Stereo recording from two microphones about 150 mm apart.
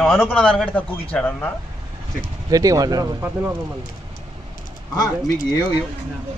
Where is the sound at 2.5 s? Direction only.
25° right (ahead or behind).